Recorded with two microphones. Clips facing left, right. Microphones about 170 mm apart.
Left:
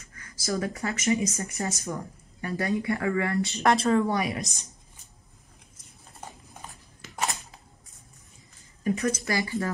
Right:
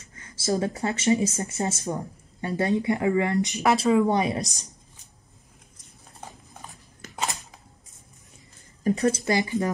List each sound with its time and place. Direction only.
0.0 s speech: 25° right (ahead or behind)
3.6 s speech: 5° right (ahead or behind)
4.1 s speech: 20° right (ahead or behind)
4.4 s a woman's voice: 35° right (ahead or behind)
7.2 s a sound: 20° right (ahead or behind)
8.8 s a woman's voice: 35° right (ahead or behind)
9.2 s speech: 20° right (ahead or behind)